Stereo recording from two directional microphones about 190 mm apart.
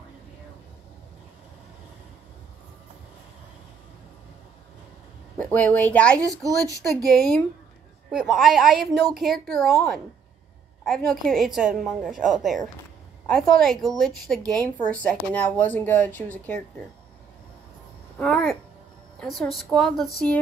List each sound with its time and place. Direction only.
5.4 s speech: 10° left (ahead or behind)
6.1 s speech: 20° right (ahead or behind)
7.1 s a woman's voice: centre (ahead or behind)
18.1 s a woman's voice: 5° left (ahead or behind)